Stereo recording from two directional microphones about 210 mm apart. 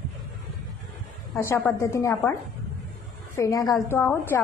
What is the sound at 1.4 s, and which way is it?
Speech, 10° left (ahead or behind).